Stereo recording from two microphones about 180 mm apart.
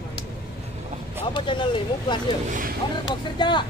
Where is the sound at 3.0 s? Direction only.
25° left (ahead or behind).